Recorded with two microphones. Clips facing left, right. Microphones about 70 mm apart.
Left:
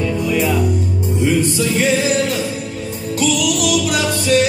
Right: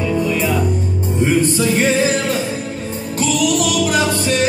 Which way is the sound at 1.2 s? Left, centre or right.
Right.